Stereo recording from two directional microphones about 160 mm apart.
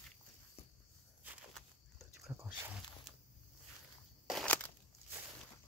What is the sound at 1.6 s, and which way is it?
Fowl, centre (ahead or behind).